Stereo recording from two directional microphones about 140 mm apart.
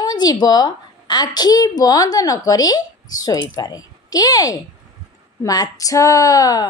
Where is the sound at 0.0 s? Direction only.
30° left (ahead or behind).